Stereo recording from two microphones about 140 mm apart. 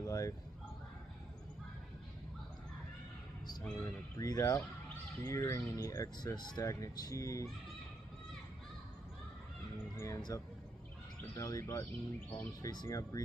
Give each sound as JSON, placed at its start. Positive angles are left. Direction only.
{"t": 0.0, "sound": "speech", "side_deg": 25}
{"t": 3.8, "sound": "speech", "side_deg": 25}
{"t": 9.9, "sound": "speech", "side_deg": 25}